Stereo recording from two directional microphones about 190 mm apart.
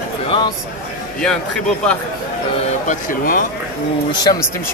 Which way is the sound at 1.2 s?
5° left (ahead or behind).